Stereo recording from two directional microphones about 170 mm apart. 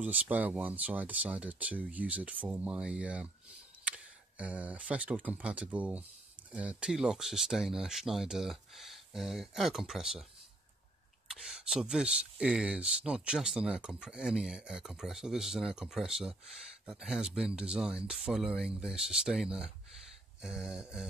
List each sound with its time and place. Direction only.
0.0 s speech: 10° right (ahead or behind)
11.2 s speech: 5° right (ahead or behind)